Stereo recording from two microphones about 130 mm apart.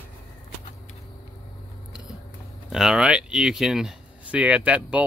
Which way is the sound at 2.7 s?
5° right (ahead or behind).